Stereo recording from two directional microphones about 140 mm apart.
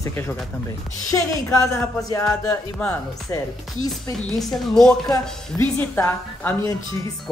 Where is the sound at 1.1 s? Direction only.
25° left (ahead or behind).